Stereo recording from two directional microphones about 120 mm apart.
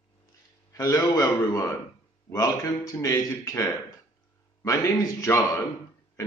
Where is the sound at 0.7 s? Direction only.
30° left (ahead or behind).